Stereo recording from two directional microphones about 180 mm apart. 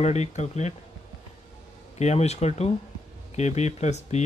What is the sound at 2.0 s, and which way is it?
Speech, 35° left (ahead or behind).